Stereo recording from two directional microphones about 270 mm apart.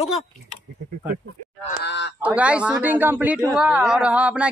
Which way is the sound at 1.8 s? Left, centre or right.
Left.